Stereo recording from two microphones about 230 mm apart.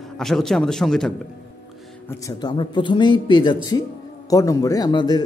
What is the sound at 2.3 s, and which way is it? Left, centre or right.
A man's voice, centre.